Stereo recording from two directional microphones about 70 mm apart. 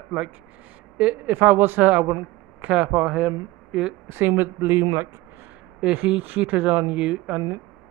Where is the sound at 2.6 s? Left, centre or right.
Centre.